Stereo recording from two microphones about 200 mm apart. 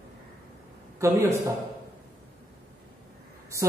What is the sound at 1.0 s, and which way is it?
Speech, 15° right (ahead or behind).